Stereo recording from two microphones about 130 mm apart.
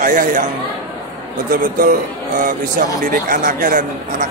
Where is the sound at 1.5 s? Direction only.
90° right.